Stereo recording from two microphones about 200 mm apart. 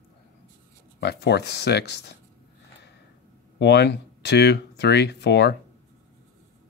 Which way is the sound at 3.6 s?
60° left (ahead or behind).